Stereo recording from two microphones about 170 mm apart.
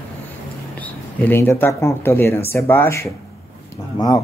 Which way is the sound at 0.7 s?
10° left (ahead or behind).